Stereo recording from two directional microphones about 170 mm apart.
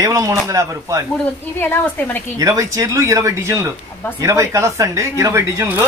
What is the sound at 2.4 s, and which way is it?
Speech, 20° right (ahead or behind).